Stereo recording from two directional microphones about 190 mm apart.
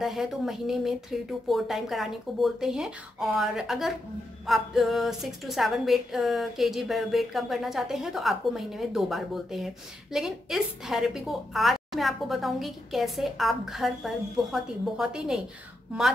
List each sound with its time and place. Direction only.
0.0 s a woman's voice: centre (ahead or behind)